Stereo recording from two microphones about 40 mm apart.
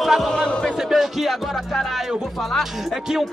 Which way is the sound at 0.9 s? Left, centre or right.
Centre.